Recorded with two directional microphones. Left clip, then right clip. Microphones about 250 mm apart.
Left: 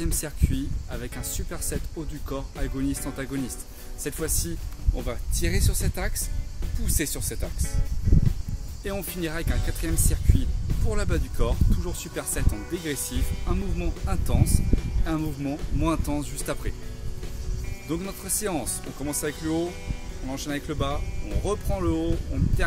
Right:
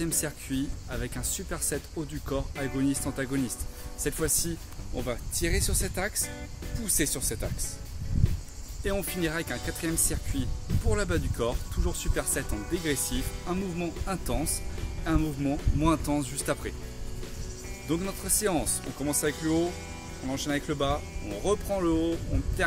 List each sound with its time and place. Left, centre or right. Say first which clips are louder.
0.0 s speech: even; centre
8.8 s speech: right 1 dB; centre
17.8 s speech: right 1 dB; centre